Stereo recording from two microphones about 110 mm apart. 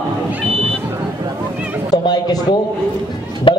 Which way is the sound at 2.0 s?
40° left (ahead or behind).